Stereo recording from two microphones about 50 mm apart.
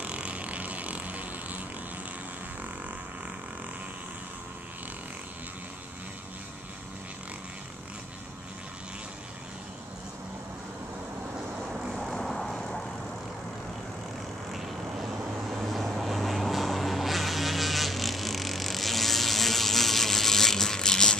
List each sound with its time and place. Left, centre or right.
0.0 s vehicle: right
11.9 s vehicle: centre
12.5 s vehicle: centre
14.5 s vehicle: centre